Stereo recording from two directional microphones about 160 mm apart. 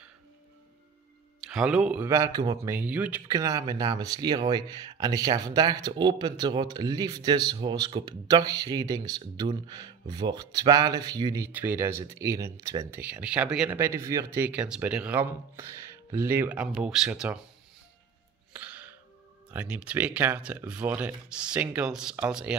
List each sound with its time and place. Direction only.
1.5 s speech: 5° right (ahead or behind)
2.0 s speech: 20° right (ahead or behind)
3.3 s speech: 20° right (ahead or behind)
13.0 s speech: 10° right (ahead or behind)
18.5 s music: 10° right (ahead or behind)
19.5 s speech: 10° right (ahead or behind)